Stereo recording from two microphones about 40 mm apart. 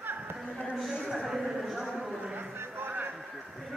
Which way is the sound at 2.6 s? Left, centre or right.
Right.